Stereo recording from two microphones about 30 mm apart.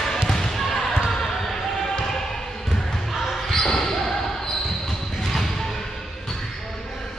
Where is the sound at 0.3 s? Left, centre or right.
Centre.